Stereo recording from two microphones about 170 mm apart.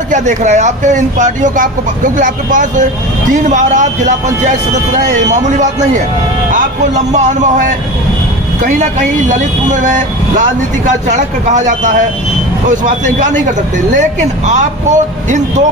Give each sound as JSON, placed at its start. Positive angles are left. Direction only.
{"t": 0.1, "sound": "speech", "side_deg": -45}
{"t": 9.3, "sound": "speech", "side_deg": -50}